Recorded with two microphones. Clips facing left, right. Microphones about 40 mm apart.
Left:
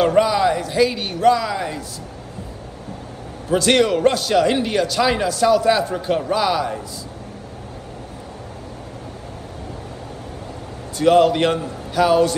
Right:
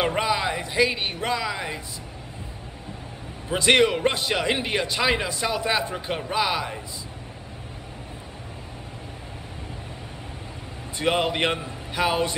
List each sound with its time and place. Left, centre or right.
0.0 s speech: centre
3.4 s a man's voice: right
11.0 s a man's voice: right